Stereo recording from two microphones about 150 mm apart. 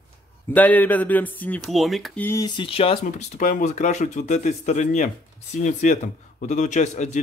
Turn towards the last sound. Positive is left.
turn(degrees=50)  # may be behind; listen again after turning